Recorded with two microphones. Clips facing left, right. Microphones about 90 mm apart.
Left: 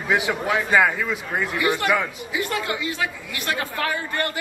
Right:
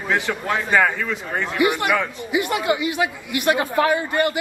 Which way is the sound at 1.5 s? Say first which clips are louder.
Right 3 dB; 20° right (ahead or behind).